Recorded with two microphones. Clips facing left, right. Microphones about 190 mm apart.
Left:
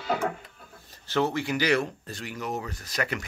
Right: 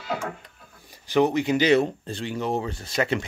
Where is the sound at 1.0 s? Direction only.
15° right (ahead or behind).